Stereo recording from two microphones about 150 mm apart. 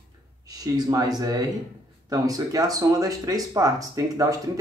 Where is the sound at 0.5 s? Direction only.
25° right (ahead or behind).